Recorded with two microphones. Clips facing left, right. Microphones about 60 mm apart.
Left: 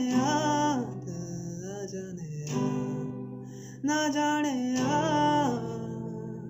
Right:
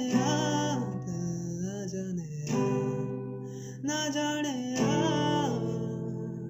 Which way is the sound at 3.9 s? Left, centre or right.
Left.